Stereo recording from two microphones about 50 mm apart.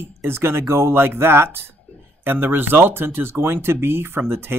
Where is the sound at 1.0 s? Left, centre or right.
Right.